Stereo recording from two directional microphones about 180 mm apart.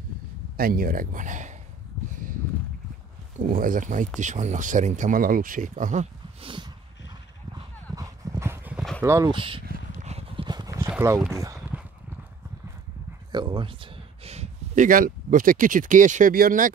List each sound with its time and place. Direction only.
0.6 s speech: 55° right (ahead or behind)
3.3 s speech: 50° right (ahead or behind)
6.4 s horse: 25° right (ahead or behind)
7.9 s clip-clop: 20° right (ahead or behind)
9.0 s speech: 15° right (ahead or behind)
9.3 s horse: 30° right (ahead or behind)
9.7 s clip-clop: 40° right (ahead or behind); by 10.9 s 20° right (ahead or behind)
10.9 s speech: 15° right (ahead or behind)
11.7 s clip-clop: 10° right (ahead or behind)
13.3 s speech: 25° right (ahead or behind); by 16.7 s 50° right (ahead or behind)